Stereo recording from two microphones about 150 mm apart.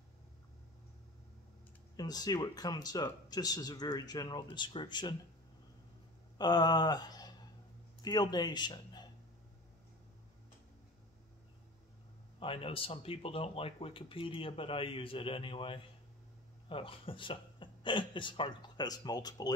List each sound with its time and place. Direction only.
2.0 s speech: 25° left (ahead or behind)
6.3 s a sound: 25° left (ahead or behind)
8.0 s a man's voice: 25° left (ahead or behind)
12.4 s speech: 35° left (ahead or behind)